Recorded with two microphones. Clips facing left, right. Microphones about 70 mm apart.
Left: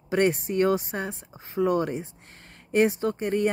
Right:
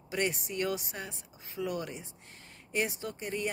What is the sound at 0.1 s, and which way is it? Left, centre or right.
Speech, left.